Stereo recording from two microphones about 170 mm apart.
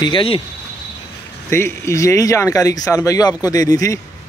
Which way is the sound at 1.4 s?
15° left (ahead or behind).